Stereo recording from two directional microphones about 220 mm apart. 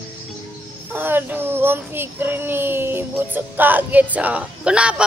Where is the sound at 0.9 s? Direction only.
10° right (ahead or behind).